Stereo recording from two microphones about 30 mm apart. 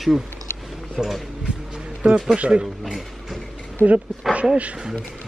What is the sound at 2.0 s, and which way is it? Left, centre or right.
Speech, right.